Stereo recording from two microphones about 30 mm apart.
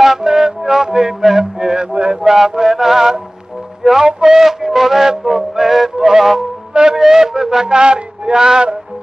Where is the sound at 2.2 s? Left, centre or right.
Centre.